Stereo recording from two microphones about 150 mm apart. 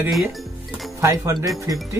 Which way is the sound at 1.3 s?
Centre (ahead or behind).